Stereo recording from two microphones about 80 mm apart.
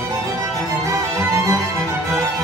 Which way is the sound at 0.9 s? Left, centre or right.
Right.